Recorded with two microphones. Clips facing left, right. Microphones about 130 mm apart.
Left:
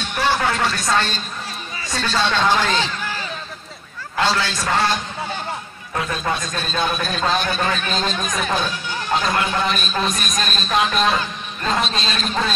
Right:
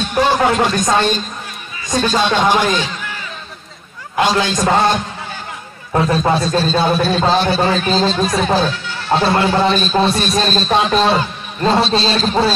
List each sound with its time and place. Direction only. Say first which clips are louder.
0.1 s music: right 5 dB; 20° right (ahead or behind)
0.4 s a man's voice: right 7 dB; 20° right (ahead or behind)
4.2 s speech: right 6 dB; 15° right (ahead or behind)
5.9 s a man's voice: right 9 dB; 30° right (ahead or behind)